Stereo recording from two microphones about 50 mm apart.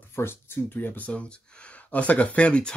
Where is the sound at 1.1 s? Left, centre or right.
Left.